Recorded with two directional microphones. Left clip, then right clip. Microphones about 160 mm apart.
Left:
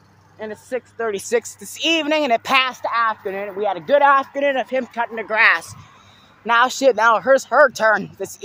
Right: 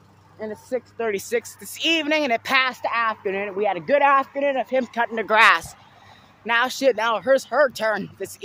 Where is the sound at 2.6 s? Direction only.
25° right (ahead or behind).